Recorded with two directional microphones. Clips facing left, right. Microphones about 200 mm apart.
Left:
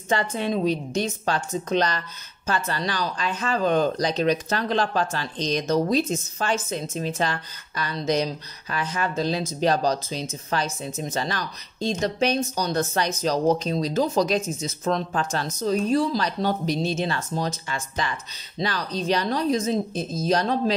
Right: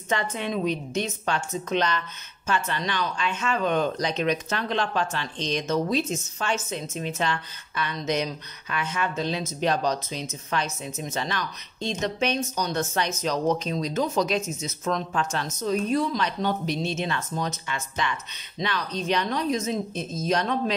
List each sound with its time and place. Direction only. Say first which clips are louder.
0.1 s a woman's voice: left 3 dB; 35° left (ahead or behind)